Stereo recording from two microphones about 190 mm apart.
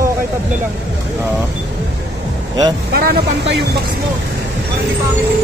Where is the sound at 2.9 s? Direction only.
55° right (ahead or behind).